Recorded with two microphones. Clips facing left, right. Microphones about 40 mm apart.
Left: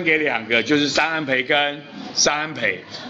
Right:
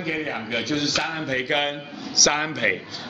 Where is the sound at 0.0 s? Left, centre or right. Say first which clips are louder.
Left 8 dB; left.